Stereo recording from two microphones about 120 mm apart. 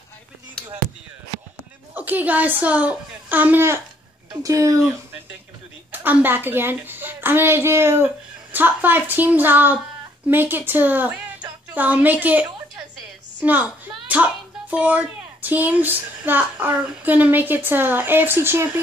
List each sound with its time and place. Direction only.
2.0 s a woman's voice: 15° right (ahead or behind)
5.9 s a woman's voice: 15° right (ahead or behind)